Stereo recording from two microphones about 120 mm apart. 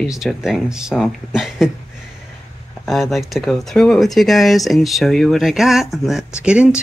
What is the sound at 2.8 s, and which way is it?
Speech, centre (ahead or behind).